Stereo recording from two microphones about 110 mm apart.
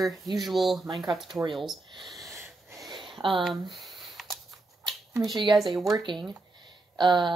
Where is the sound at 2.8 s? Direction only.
45° right (ahead or behind).